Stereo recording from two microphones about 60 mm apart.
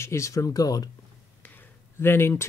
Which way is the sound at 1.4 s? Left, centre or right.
Left.